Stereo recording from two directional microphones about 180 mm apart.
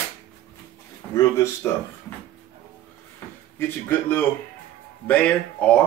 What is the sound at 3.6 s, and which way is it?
Speech, 10° left (ahead or behind).